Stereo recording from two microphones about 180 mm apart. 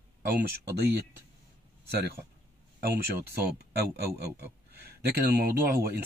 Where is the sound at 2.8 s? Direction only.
60° right (ahead or behind).